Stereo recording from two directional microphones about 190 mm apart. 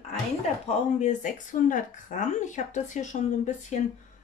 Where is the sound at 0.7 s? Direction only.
40° left (ahead or behind).